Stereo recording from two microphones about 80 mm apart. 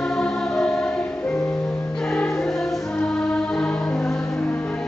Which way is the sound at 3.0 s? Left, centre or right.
Centre.